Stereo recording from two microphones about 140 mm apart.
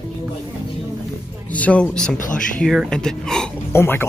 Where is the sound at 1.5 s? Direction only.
10° left (ahead or behind).